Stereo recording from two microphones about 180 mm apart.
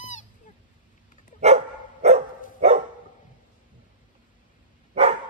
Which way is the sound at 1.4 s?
35° right (ahead or behind).